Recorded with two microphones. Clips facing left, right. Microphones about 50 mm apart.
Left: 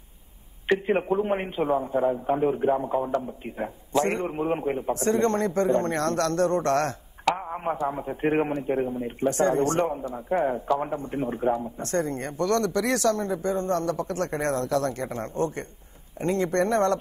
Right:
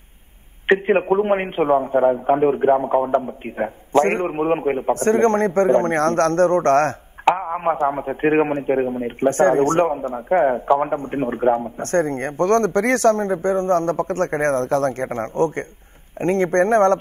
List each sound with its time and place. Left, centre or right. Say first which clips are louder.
0.7 s a man's voice: right 7 dB; right